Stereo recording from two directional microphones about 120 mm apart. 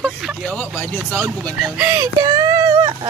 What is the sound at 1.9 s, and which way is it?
Child singing, 30° right (ahead or behind).